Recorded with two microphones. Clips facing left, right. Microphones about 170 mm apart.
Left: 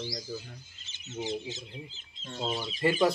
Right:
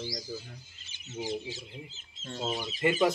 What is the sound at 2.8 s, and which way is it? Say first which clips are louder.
Speech: left 1 dB; 30° left (ahead or behind).